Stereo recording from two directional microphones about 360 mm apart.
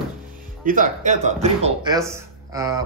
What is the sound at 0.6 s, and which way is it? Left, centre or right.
Speech, right.